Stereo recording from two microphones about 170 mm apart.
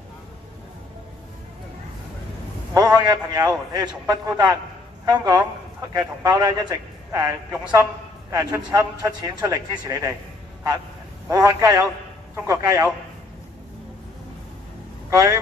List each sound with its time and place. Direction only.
2.7 s a man's voice: 20° right (ahead or behind)
5.0 s a man's voice: 25° right (ahead or behind)
11.2 s a man's voice: 20° right (ahead or behind)
15.0 s speech: 20° right (ahead or behind)